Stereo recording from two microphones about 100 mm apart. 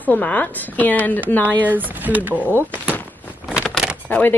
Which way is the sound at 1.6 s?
15° right (ahead or behind).